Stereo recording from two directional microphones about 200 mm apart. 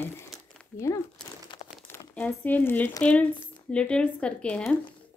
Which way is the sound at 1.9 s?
5° left (ahead or behind).